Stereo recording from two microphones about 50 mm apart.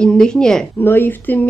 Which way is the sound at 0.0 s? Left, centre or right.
Centre.